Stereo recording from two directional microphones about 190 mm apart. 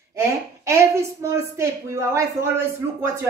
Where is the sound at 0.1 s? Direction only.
15° right (ahead or behind).